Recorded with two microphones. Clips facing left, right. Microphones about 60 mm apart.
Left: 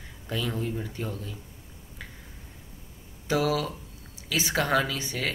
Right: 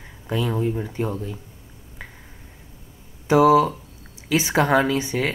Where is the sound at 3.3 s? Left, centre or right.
Right.